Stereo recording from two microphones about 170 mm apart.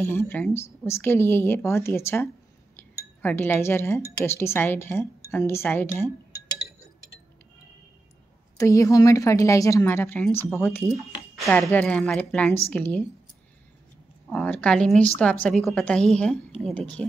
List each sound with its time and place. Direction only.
0.0 s a woman's voice: 15° left (ahead or behind)
2.7 s cutlery: 10° left (ahead or behind)
4.3 s a woman's voice: 15° left (ahead or behind)
8.5 s a woman's voice: 20° left (ahead or behind)
11.3 s a woman's voice: centre (ahead or behind)
14.3 s a woman's voice: 10° left (ahead or behind)